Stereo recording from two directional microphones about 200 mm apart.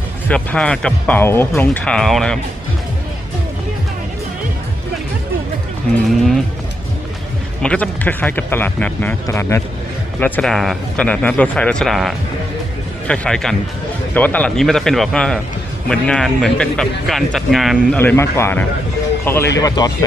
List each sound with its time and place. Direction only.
0.3 s speech: 5° left (ahead or behind)
6.0 s speech: centre (ahead or behind)
7.6 s speech: 5° left (ahead or behind)